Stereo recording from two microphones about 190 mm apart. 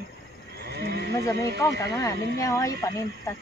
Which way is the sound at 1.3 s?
15° left (ahead or behind).